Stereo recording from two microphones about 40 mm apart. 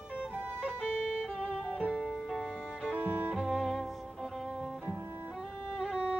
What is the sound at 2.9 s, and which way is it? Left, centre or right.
Music, right.